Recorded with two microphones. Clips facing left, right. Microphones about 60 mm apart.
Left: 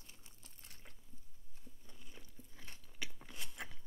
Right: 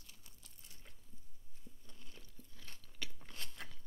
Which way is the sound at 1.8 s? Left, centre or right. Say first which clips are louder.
Left 2 dB; centre.